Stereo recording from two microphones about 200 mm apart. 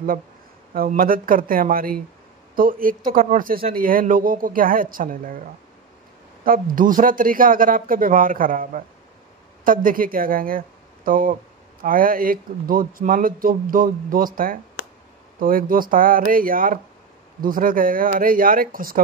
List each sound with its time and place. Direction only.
0.7 s speech: 45° right (ahead or behind)
6.4 s speech: 45° right (ahead or behind)